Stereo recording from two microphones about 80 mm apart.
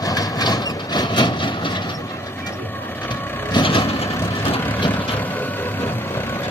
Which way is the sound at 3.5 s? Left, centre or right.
Left.